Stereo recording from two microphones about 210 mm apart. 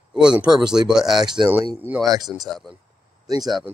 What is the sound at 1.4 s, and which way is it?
Speech, 10° right (ahead or behind).